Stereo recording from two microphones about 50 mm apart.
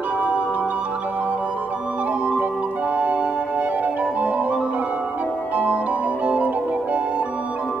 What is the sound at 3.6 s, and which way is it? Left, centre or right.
Music, right.